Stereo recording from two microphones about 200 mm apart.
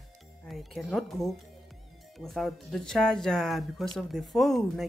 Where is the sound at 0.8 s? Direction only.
Centre (ahead or behind).